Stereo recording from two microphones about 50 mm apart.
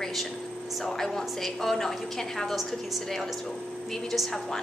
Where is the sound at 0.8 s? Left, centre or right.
Centre.